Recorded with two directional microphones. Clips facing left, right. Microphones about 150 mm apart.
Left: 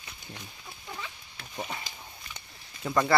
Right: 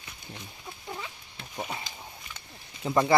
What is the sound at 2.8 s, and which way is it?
Speech, 20° right (ahead or behind).